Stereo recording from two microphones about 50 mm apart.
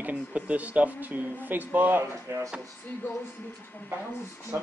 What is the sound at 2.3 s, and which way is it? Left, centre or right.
Speech, right.